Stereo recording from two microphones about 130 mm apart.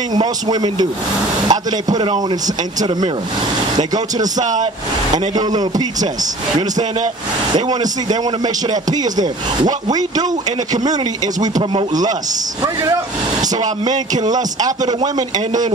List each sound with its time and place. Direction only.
0.1 s speech: 30° right (ahead or behind)
4.4 s speech: 70° right (ahead or behind)
5.1 s speech: 30° right (ahead or behind)
7.5 s speech: 30° right (ahead or behind)
12.6 s speech: 30° right (ahead or behind)